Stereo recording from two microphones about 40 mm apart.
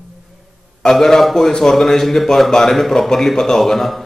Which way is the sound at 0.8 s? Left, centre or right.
Centre.